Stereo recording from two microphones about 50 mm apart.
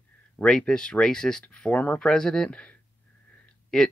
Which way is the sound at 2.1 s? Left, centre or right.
Centre.